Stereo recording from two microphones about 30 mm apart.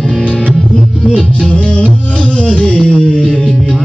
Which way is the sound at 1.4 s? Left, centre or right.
Left.